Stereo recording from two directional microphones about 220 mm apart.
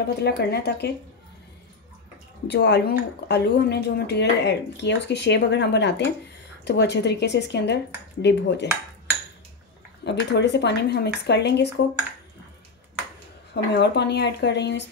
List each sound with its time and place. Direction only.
0.2 s speech: 50° left (ahead or behind)
2.4 s speech: 50° left (ahead or behind)
10.0 s speech: 50° left (ahead or behind)
13.5 s speech: 50° left (ahead or behind)